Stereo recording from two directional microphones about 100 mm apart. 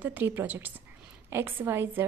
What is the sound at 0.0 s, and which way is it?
A woman's voice, 15° right (ahead or behind).